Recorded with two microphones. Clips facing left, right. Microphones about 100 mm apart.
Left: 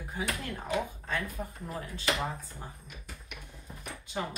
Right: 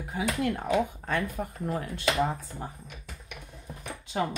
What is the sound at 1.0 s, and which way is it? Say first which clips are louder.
Speech: right 5 dB; 55° right (ahead or behind).